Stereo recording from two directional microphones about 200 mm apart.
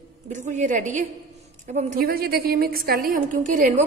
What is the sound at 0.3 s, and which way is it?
A woman's voice, 35° right (ahead or behind).